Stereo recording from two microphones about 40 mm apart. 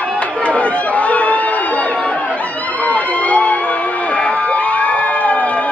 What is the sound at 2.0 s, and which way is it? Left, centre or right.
Chatter, left.